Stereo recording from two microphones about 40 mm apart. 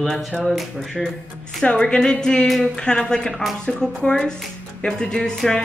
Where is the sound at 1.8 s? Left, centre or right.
Centre.